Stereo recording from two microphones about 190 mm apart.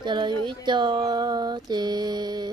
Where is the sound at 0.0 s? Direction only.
25° right (ahead or behind).